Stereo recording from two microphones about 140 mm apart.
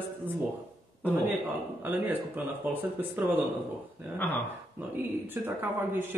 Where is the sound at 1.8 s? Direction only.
15° right (ahead or behind).